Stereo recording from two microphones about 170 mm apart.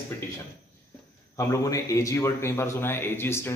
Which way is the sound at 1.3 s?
20° left (ahead or behind).